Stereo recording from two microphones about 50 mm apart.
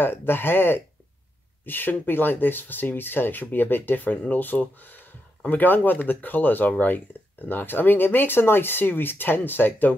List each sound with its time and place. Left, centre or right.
0.0 s speech: left